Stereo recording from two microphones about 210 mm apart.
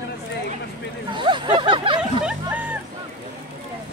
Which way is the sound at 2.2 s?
5° right (ahead or behind).